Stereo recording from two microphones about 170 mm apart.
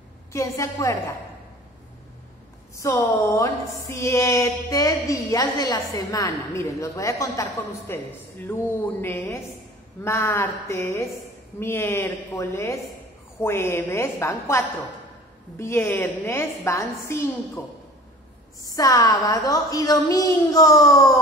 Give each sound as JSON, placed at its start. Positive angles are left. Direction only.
{"t": 0.3, "sound": "a woman's voice", "side_deg": 20}
{"t": 2.8, "sound": "music", "side_deg": 15}
{"t": 18.6, "sound": "a woman's voice", "side_deg": 20}